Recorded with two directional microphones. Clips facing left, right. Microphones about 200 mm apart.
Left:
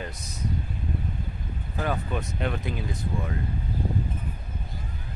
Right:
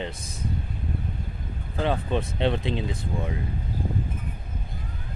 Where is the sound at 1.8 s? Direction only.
25° right (ahead or behind).